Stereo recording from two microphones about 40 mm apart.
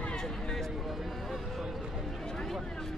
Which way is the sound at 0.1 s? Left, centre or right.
Centre.